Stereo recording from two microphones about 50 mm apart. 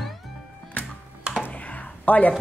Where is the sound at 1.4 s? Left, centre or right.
Left.